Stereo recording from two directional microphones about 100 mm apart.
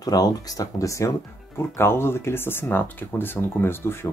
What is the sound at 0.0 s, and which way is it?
Speech, 40° left (ahead or behind).